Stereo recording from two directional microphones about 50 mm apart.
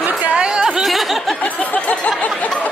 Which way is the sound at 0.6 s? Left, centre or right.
Centre.